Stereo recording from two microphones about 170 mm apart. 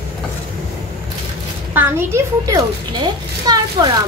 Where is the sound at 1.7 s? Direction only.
15° right (ahead or behind).